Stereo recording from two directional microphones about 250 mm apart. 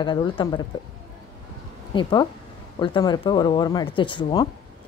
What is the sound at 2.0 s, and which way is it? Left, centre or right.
A woman's voice, centre.